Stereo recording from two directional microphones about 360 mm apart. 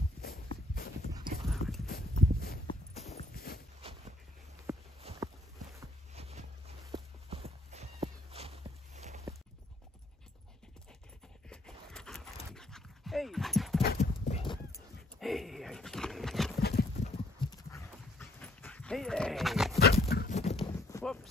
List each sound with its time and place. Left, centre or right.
0.2 s walk: left
1.5 s clip-clop: centre
1.9 s walk: left
3.8 s a sound: centre
6.9 s horse: centre
11.4 s a sound: centre
12.4 s dog: centre
13.8 s dog: centre
15.1 s horse: centre
16.6 s horse: left
17.4 s dog: centre
19.8 s dog: left
21.0 s clip-clop: centre